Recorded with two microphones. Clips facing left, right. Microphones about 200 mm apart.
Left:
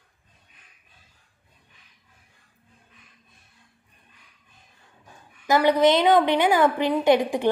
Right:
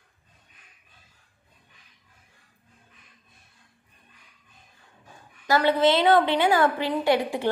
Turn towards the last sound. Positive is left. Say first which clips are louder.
# left 4 dB
turn(degrees=20)  # may be behind; listen again after turning